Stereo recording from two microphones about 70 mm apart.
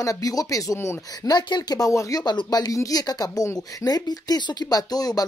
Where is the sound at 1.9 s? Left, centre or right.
Left.